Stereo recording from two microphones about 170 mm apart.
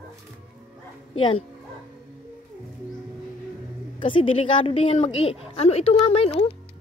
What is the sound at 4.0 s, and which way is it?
A woman's voice, 30° left (ahead or behind).